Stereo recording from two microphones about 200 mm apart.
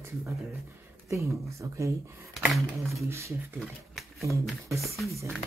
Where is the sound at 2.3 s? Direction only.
Centre (ahead or behind).